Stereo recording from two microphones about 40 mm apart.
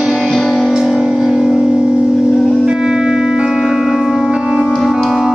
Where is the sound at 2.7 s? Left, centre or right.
Centre.